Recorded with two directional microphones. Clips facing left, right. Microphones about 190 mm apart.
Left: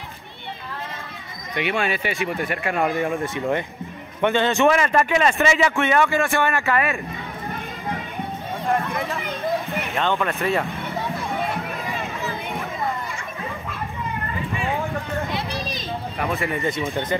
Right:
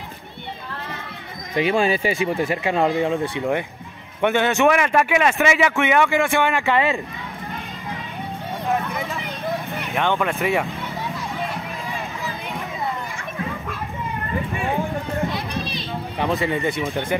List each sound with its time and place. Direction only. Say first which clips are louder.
1.5 s speech: right 5 dB; 35° right (ahead or behind); by 7.0 s 15° right (ahead or behind)
8.7 s speech: left 1 dB; centre (ahead or behind)
9.9 s speech: right 2 dB; 15° right (ahead or behind)
16.3 s speech: right 2 dB; 15° right (ahead or behind)